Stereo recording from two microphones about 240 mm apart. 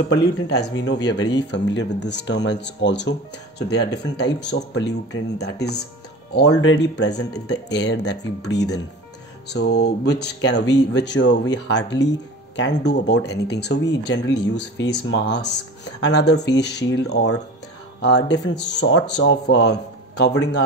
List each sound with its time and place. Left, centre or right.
0.1 s speech: left